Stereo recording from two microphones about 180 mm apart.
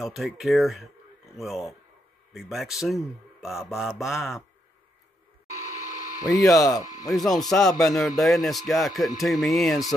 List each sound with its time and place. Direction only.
0.0 s speech: centre (ahead or behind)
6.1 s speech: 20° left (ahead or behind)
7.2 s speech: centre (ahead or behind)